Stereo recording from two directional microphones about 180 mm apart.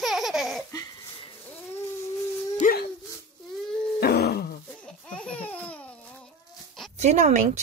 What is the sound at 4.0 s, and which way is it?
Groan, 60° left (ahead or behind).